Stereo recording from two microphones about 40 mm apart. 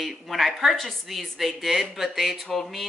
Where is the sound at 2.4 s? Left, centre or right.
Centre.